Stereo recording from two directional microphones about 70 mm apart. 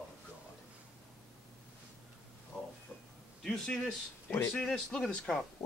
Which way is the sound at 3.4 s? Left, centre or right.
Centre.